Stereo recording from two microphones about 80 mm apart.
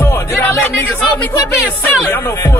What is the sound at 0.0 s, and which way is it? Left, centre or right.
Music, left.